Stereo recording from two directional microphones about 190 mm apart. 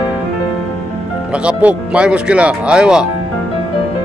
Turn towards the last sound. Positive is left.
turn(degrees=-5)  # may be behind; listen again after turning